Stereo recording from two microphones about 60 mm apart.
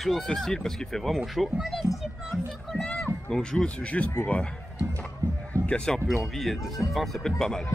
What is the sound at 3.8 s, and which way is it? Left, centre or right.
Speech, left.